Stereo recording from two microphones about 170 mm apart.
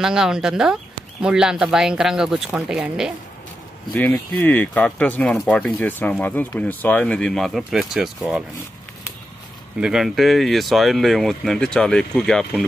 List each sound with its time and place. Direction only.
0.0 s speech: 5° right (ahead or behind)
3.9 s speech: 10° left (ahead or behind)
9.8 s speech: 5° right (ahead or behind)